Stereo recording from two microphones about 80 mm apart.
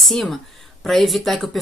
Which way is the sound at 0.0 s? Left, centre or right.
Centre.